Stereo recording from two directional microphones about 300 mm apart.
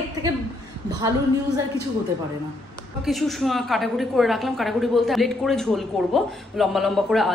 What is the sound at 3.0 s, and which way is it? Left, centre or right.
A woman's voice, centre.